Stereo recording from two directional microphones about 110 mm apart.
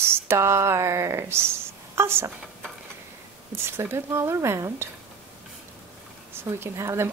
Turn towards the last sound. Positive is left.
turn(degrees=-25)  # may be behind; listen again after turning